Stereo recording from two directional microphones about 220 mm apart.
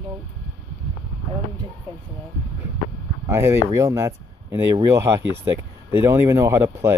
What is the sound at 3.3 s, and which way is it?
Speech, 10° right (ahead or behind).